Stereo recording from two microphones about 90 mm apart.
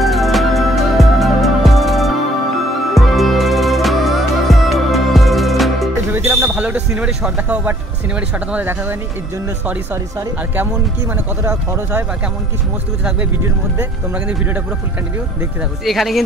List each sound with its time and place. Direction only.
0.0 s music: centre (ahead or behind)
6.1 s a sound: 25° right (ahead or behind)
11.4 s speech: 25° right (ahead or behind)
15.8 s speech: centre (ahead or behind)